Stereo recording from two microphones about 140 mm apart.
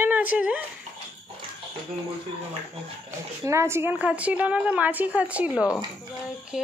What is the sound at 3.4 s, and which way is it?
A woman's voice, 20° right (ahead or behind).